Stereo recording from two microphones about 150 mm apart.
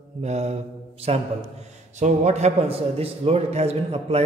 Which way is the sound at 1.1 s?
40° right (ahead or behind).